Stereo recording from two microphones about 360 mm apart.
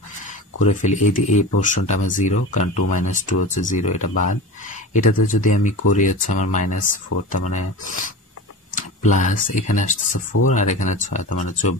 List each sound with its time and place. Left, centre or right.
0.6 s speech: centre